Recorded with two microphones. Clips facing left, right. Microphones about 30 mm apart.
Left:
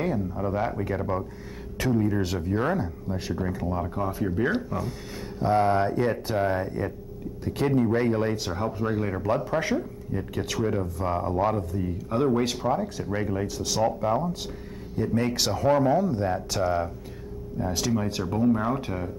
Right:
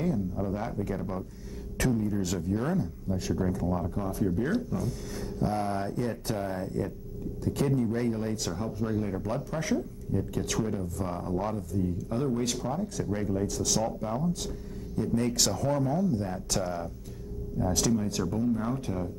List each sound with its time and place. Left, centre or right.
0.0 s speech: left
2.2 s speech: left
8.4 s speech: left
13.5 s speech: left
16.4 s speech: centre
17.6 s speech: left